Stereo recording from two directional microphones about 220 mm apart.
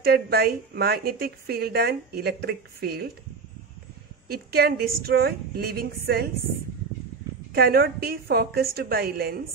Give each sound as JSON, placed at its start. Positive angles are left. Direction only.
{"t": 0.0, "sound": "a woman's voice", "side_deg": -45}
{"t": 4.3, "sound": "a woman's voice", "side_deg": -45}
{"t": 7.5, "sound": "a woman's voice", "side_deg": -45}